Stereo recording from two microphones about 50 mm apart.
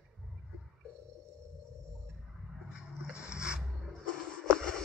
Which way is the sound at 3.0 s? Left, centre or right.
Centre.